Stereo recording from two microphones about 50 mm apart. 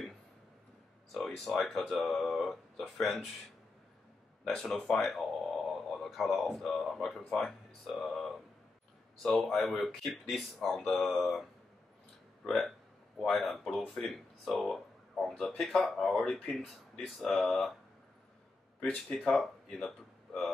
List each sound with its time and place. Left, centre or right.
1.1 s speech: centre
4.6 s speech: centre
4.9 s speech: centre
12.4 s speech: centre
19.2 s speech: centre